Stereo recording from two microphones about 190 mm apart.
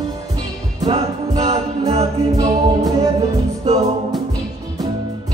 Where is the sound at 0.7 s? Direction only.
25° right (ahead or behind).